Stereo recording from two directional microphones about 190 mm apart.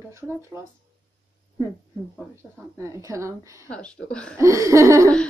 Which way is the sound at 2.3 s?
15° right (ahead or behind).